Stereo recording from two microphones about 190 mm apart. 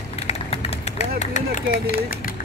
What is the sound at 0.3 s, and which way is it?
Vehicle, 30° left (ahead or behind).